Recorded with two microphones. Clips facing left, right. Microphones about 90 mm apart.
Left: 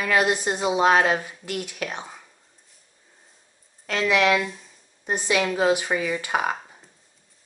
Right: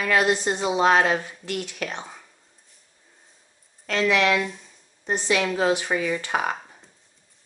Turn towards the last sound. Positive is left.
turn(degrees=5)  # may be behind; listen again after turning